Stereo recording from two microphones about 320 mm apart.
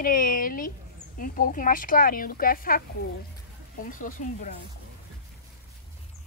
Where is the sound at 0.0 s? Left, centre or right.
Left.